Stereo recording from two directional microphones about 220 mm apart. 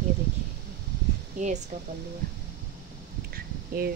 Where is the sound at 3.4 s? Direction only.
45° right (ahead or behind).